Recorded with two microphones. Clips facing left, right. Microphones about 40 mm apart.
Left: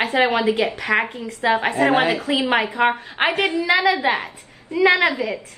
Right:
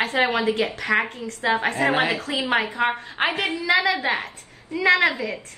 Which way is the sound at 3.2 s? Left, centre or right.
Left.